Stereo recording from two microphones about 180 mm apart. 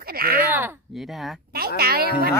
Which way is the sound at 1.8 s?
60° right (ahead or behind).